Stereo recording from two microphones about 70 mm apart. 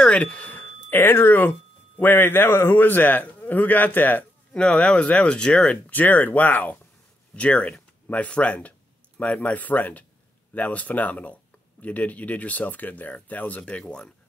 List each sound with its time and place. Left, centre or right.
0.0 s a sound: centre; by 1.5 s left
2.0 s a man's voice: left
4.5 s a man's voice: centre